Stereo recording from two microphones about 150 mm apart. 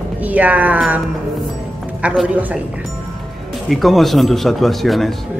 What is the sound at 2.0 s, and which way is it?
Speech, 10° right (ahead or behind).